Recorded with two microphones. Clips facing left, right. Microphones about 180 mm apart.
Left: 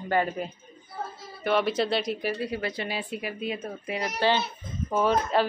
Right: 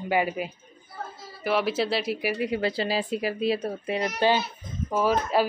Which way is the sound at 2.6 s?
30° right (ahead or behind).